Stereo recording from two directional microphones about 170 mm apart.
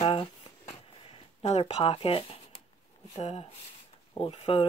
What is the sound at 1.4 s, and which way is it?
Speech, 40° left (ahead or behind).